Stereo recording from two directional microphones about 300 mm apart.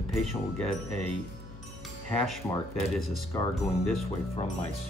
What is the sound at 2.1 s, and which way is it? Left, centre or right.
Speech, centre.